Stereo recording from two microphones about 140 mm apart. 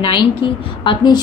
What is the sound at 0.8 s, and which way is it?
Speech, 30° left (ahead or behind).